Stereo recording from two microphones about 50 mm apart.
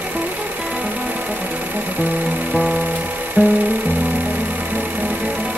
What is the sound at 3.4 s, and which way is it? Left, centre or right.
Music, right.